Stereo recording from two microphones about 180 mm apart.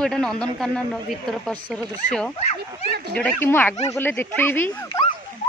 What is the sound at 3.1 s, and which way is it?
Speech, 10° left (ahead or behind).